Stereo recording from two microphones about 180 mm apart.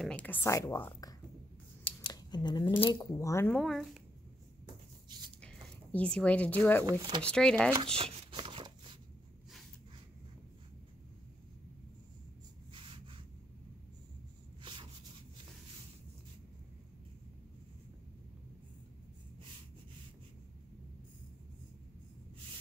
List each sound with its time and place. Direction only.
0.0 s a woman's voice: 10° left (ahead or behind)
1.9 s speech: 25° left (ahead or behind); by 4.0 s centre (ahead or behind)
5.4 s speech: 5° left (ahead or behind)
6.9 s speech: 25° right (ahead or behind)
7.2 s speech: 5° left (ahead or behind)
7.7 s shuffling cards: 30° right (ahead or behind)
12.7 s rub: 30° right (ahead or behind)
14.6 s a sound: 25° right (ahead or behind)